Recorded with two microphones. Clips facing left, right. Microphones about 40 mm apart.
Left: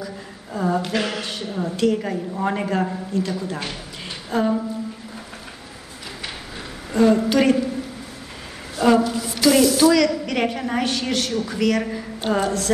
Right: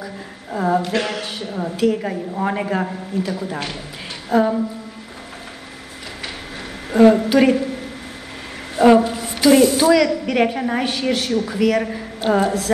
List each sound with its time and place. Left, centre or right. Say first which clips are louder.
0.0 s a sound: right 1 dB; centre
0.9 s a woman's voice: right 2 dB; centre
7.2 s a woman's voice: right 3 dB; centre
8.7 s a sound: right 5 dB; right
9.5 s speech: right 3 dB; right
9.9 s a woman's voice: right 3 dB; centre